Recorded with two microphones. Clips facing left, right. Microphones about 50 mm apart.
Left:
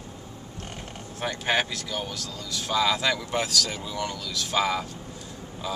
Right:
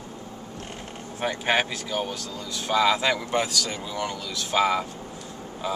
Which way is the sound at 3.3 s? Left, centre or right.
Centre.